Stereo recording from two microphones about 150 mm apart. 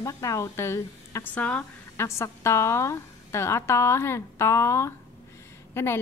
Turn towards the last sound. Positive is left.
turn(degrees=15)  # may be behind; listen again after turning